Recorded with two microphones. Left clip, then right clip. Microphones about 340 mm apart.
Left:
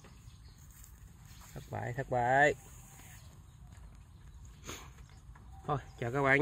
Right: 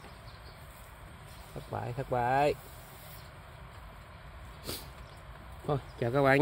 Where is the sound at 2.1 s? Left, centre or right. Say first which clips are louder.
Even; left.